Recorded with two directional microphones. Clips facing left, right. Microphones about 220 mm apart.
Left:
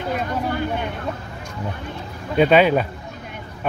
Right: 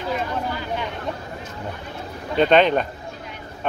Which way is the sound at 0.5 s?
55° left (ahead or behind).